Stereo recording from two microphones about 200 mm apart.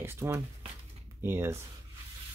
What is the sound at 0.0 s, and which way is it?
Speech, 15° right (ahead or behind).